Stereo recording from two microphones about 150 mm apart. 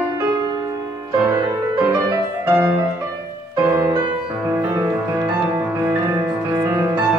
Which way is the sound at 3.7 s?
30° right (ahead or behind).